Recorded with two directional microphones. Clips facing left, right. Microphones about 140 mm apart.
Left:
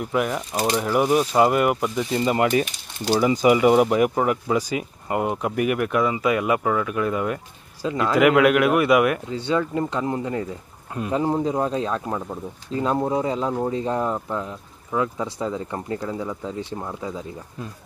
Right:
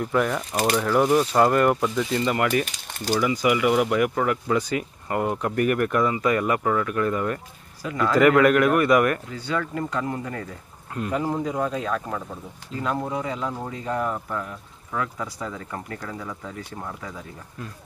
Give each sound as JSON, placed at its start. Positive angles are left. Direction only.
{"t": 0.0, "sound": "speech", "side_deg": 10}
{"t": 7.8, "sound": "speech", "side_deg": 25}
{"t": 8.1, "sound": "speech", "side_deg": 10}
{"t": 9.3, "sound": "speech", "side_deg": 25}